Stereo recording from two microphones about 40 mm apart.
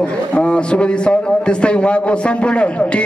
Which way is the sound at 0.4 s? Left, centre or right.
Left.